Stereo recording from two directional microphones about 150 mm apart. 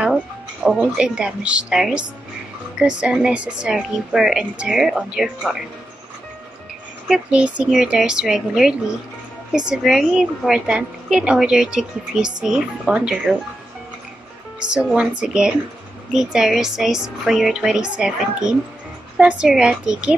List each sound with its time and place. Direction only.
0.7 s a woman's voice: 5° right (ahead or behind)
7.1 s speech: 5° right (ahead or behind)
14.6 s a woman's voice: 5° right (ahead or behind)